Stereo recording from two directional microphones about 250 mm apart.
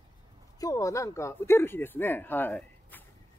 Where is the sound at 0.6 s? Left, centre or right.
Centre.